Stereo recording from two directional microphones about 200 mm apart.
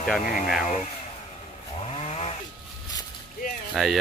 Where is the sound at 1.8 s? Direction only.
30° left (ahead or behind).